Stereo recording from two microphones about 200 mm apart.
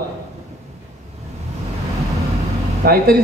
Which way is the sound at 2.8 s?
50° right (ahead or behind).